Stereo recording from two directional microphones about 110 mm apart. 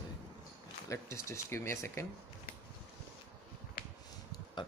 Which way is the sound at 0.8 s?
25° left (ahead or behind).